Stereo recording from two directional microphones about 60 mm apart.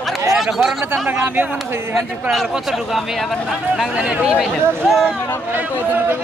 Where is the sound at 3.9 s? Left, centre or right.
Centre.